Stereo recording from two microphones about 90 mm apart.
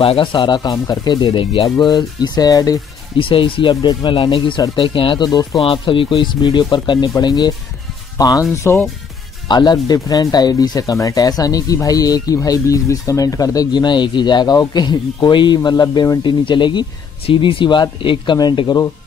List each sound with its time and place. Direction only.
0.0 s speech: 80° left
1.9 s speech: 50° left (ahead or behind)
3.2 s speech: 80° left; by 5.6 s 45° left (ahead or behind)
5.6 s speech: 80° left; by 8.5 s 45° left (ahead or behind)
9.5 s speech: 55° left (ahead or behind)
16.3 s speech: 60° left (ahead or behind)
17.3 s speech: 75° left (ahead or behind); by 18.8 s 55° left (ahead or behind)